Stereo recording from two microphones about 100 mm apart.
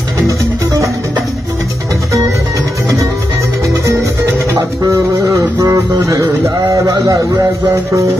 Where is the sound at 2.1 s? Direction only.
30° right (ahead or behind).